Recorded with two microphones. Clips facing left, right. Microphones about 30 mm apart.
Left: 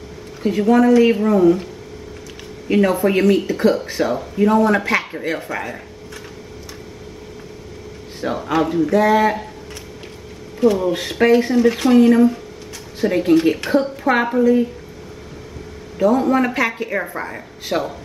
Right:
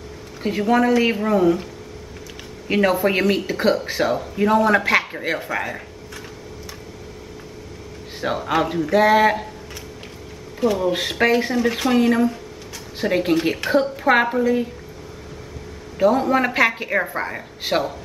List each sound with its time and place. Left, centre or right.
0.4 s speech: centre
2.7 s speech: centre
8.2 s speech: centre
10.6 s speech: centre
13.0 s speech: centre
13.3 s speech: centre
16.0 s speech: centre